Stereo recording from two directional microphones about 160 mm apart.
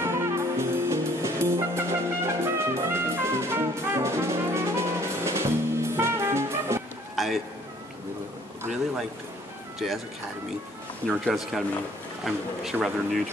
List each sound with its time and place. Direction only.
0.0 s music: 15° right (ahead or behind)
7.2 s a sound: centre (ahead or behind)
11.1 s speech: centre (ahead or behind)